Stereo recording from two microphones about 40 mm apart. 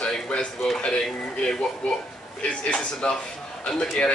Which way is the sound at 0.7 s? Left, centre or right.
Left.